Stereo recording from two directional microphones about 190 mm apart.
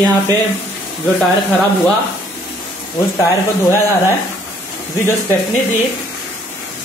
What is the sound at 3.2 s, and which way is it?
Speech, 15° left (ahead or behind).